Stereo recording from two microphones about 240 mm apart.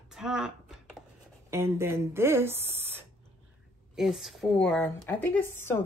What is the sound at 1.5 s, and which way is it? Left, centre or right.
A woman's voice, centre.